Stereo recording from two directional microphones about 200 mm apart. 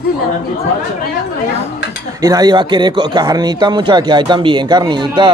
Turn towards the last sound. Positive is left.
turn(degrees=-20)  # may be behind; listen again after turning